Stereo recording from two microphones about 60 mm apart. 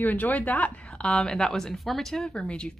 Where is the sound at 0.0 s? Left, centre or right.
Left.